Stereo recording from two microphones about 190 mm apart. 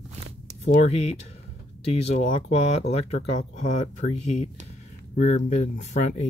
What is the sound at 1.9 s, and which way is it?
Speech, 35° left (ahead or behind).